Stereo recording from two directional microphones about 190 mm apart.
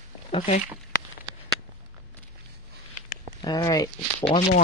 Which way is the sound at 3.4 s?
20° left (ahead or behind).